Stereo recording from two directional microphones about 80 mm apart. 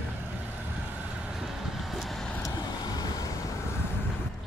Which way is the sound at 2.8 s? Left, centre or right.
Left.